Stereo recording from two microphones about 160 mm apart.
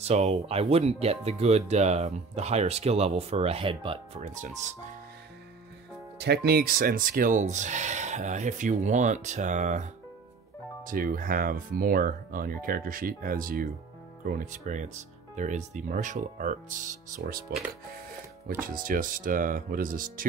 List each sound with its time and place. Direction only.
0.0 s speech: 40° right (ahead or behind)
4.2 s speech: 50° right (ahead or behind)
6.1 s speech: 90° right; by 9.8 s 50° right (ahead or behind)
10.9 s speech: 60° right (ahead or behind)